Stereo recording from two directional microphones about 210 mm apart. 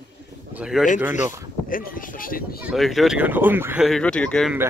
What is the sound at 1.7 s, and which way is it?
Speech, 40° left (ahead or behind).